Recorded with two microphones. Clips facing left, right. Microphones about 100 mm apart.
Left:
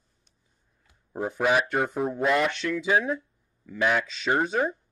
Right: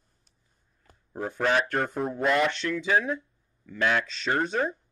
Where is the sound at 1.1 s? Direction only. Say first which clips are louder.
Left 2 dB; 10° left (ahead or behind).